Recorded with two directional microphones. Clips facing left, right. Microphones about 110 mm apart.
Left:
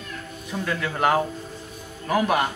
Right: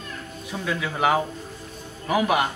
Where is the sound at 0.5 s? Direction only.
5° right (ahead or behind).